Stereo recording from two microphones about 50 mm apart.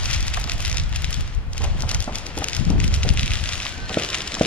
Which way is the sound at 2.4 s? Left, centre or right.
Left.